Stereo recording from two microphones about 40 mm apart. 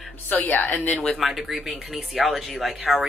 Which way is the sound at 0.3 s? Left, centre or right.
Left.